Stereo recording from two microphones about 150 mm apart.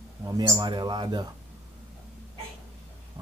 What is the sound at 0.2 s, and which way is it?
Speech, 25° right (ahead or behind).